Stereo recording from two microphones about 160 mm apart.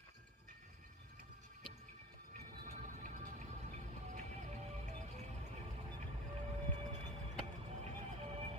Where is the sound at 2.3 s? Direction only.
50° right (ahead or behind).